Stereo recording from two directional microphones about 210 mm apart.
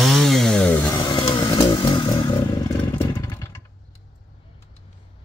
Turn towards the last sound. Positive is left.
turn(degrees=15)  # may be behind; listen again after turning